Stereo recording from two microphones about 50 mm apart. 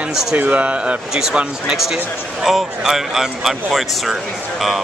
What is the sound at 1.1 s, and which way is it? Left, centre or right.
Speech, centre.